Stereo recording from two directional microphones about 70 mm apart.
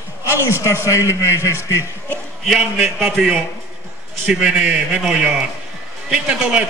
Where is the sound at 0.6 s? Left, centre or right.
Left.